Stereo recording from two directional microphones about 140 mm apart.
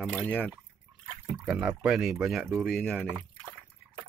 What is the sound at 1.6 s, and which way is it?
Speech, 10° right (ahead or behind).